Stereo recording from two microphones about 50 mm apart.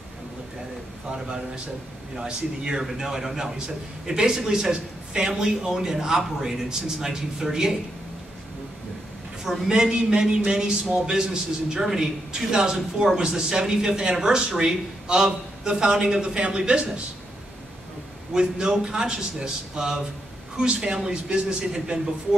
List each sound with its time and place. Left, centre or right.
1.1 s a man's voice: centre
9.4 s a man's voice: centre
18.3 s a man's voice: centre